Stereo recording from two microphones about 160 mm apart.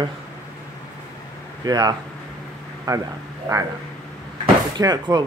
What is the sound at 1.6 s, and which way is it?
Speech, 25° right (ahead or behind).